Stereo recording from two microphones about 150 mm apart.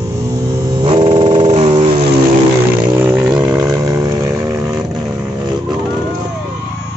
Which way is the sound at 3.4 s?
25° right (ahead or behind).